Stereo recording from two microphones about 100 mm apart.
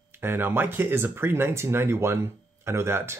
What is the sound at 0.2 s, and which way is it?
Speech, 25° right (ahead or behind).